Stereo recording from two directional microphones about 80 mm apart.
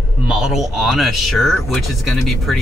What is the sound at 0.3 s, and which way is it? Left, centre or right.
Speech, centre.